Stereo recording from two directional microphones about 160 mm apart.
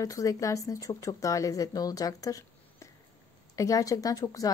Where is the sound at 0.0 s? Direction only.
20° left (ahead or behind).